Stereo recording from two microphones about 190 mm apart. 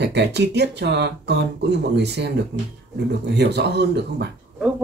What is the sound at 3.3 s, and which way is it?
Speech, 60° right (ahead or behind).